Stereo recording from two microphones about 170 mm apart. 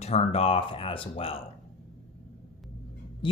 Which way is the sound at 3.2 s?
30° left (ahead or behind).